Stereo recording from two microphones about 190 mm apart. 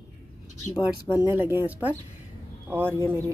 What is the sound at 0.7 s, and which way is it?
Speech, 20° left (ahead or behind).